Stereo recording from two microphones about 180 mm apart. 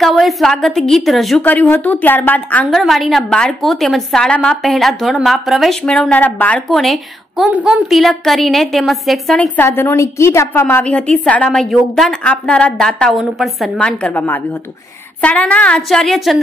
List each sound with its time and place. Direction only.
0.0 s a woman's voice: centre (ahead or behind)
9.6 s a woman's voice: 10° left (ahead or behind)